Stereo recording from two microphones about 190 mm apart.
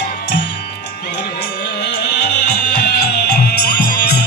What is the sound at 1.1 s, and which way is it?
Music, 65° left (ahead or behind).